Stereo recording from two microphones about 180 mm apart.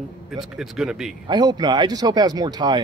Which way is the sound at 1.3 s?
25° right (ahead or behind).